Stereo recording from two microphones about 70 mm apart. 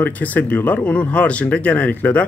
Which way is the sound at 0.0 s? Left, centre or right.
Left.